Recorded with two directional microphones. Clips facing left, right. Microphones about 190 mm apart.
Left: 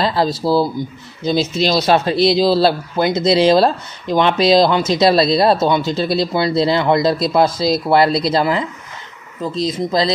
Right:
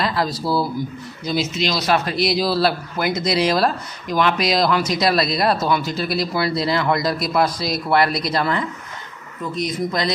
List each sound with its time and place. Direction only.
0.0 s speech: 25° left (ahead or behind)